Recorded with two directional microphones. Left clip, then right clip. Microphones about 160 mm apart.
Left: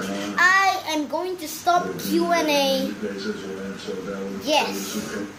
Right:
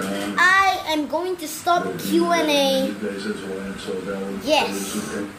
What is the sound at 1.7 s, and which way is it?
A woman's voice, centre (ahead or behind).